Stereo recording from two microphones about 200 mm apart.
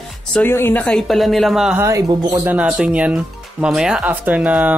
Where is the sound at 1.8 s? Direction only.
15° right (ahead or behind).